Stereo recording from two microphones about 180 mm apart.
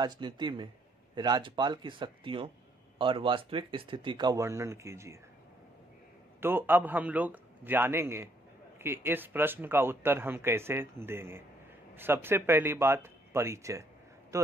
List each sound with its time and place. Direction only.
0.0 s speech: 25° right (ahead or behind)
6.4 s speech: 10° right (ahead or behind)